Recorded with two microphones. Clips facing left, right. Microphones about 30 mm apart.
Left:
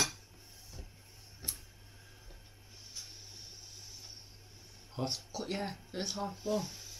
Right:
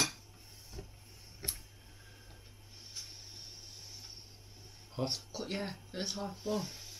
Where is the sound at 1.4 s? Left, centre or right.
Centre.